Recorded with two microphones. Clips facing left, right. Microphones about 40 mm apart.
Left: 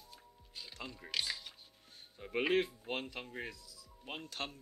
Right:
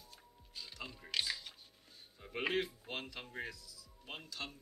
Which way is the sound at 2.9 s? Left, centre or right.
Left.